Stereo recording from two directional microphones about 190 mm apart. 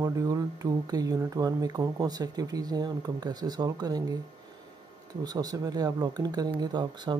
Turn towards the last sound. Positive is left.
turn(degrees=-25)  # may be behind; listen again after turning